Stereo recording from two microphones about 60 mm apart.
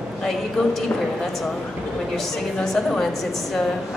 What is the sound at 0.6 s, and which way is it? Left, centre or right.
Speech, centre.